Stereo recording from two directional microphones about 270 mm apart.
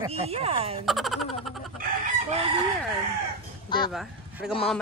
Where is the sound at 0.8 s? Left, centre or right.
Centre.